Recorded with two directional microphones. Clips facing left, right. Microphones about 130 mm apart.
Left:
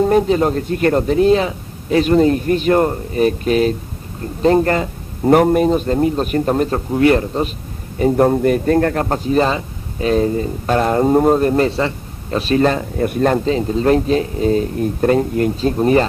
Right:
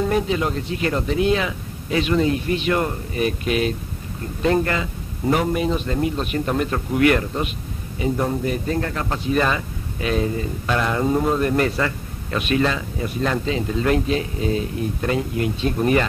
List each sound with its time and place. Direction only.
0.0 s a man's voice: 40° left (ahead or behind)
8.0 s a man's voice: 55° left (ahead or behind); by 16.1 s 35° left (ahead or behind)